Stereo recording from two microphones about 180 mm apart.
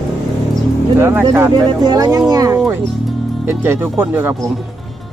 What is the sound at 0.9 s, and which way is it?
Speech, 15° right (ahead or behind).